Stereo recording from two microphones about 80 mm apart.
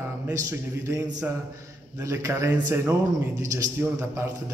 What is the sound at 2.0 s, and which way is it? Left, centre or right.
A man's voice, right.